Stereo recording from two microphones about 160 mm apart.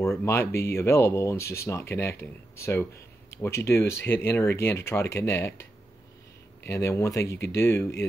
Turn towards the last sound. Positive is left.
turn(degrees=15)  # may be behind; listen again after turning